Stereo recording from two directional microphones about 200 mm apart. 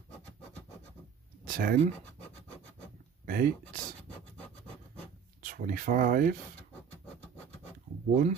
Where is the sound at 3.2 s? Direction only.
45° right (ahead or behind).